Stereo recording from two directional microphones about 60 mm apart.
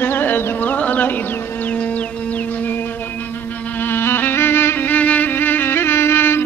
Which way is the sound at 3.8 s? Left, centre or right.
Left.